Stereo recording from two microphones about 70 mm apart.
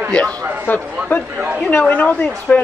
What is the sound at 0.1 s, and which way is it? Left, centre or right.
Speech, centre.